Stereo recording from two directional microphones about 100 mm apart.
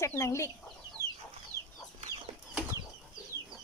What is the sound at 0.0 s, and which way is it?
Speech, 30° left (ahead or behind).